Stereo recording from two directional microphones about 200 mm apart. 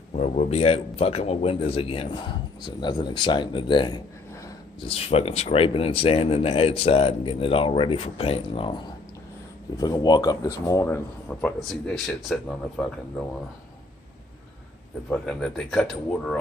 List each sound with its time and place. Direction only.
0.1 s speech: 35° left (ahead or behind); by 12.8 s centre (ahead or behind)
15.0 s speech: 5° left (ahead or behind)